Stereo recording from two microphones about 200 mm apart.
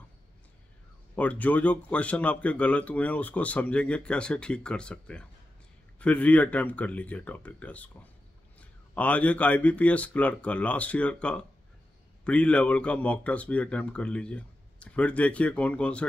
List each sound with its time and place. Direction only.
1.1 s speech: 5° left (ahead or behind)